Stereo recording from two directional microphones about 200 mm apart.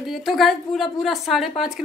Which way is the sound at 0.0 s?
Centre (ahead or behind).